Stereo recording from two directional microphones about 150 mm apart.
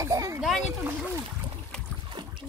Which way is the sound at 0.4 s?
Centre (ahead or behind).